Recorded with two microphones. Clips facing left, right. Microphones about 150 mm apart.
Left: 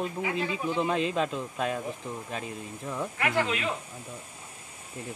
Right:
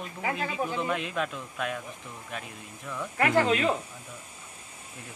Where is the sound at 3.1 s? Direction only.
40° right (ahead or behind).